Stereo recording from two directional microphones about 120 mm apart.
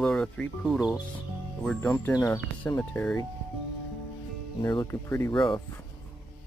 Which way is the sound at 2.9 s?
15° left (ahead or behind).